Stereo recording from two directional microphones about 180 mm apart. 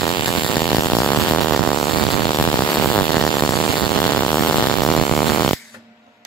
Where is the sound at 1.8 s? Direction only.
20° left (ahead or behind).